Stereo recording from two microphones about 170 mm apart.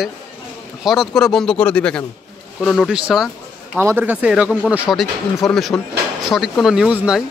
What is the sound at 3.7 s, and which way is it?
Speech, 15° right (ahead or behind).